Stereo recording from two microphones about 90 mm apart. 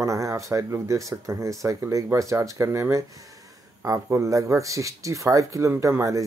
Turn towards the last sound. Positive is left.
turn(degrees=-40)  # may be behind; listen again after turning